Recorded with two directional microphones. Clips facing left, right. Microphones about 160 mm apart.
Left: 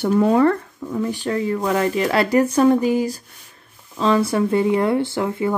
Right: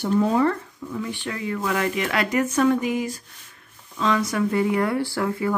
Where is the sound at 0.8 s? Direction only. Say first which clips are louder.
Left 6 dB; 40° left (ahead or behind).